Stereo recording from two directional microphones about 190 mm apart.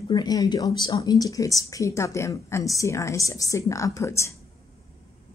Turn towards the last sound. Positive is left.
turn(degrees=15)  # may be behind; listen again after turning